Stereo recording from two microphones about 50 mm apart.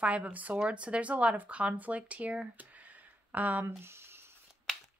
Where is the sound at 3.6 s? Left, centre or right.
Right.